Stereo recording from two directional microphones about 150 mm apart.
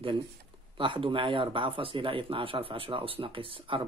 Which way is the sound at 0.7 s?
35° right (ahead or behind).